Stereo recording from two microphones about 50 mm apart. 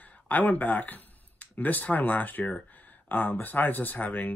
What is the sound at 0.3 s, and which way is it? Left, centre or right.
Speech, left.